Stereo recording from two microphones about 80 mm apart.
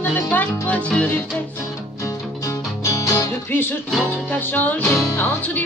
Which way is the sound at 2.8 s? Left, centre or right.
Left.